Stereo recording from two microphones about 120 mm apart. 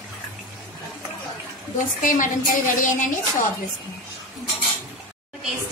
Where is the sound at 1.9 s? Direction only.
90° left.